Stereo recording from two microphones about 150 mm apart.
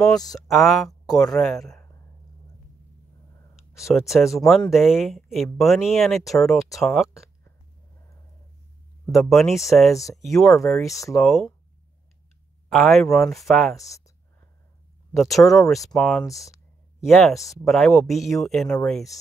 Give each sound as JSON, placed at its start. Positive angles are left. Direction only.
{"t": 0.5, "sound": "speech", "side_deg": 0}
{"t": 4.0, "sound": "speech", "side_deg": 0}
{"t": 9.1, "sound": "speech", "side_deg": 0}
{"t": 12.7, "sound": "speech", "side_deg": 5}
{"t": 13.7, "sound": "speech", "side_deg": 20}
{"t": 15.1, "sound": "speech", "side_deg": 0}
{"t": 16.3, "sound": "speech", "side_deg": 20}
{"t": 17.0, "sound": "speech", "side_deg": 0}